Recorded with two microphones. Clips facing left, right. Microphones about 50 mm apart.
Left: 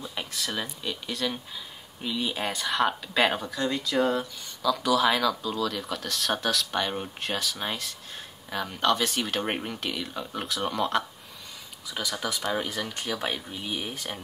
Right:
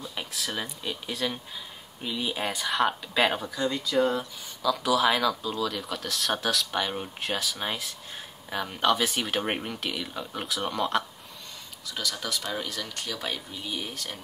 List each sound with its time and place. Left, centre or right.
0.0 s speech: centre
11.9 s speech: centre